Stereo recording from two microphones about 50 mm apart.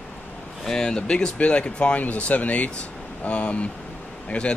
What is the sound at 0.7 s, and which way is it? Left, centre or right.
Speech, centre.